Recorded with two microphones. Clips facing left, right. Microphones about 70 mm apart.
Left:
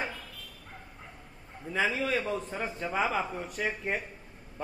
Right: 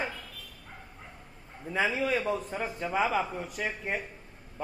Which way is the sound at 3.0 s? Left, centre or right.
Centre.